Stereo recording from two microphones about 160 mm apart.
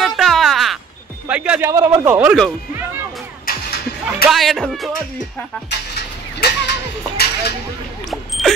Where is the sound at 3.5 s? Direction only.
65° left (ahead or behind).